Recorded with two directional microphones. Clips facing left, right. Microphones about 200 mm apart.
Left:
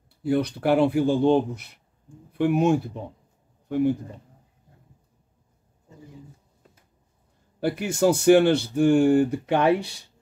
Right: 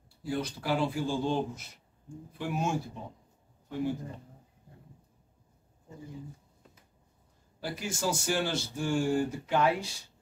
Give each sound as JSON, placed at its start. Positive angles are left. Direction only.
{"t": 0.2, "sound": "speech", "side_deg": 60}
{"t": 7.6, "sound": "speech", "side_deg": 60}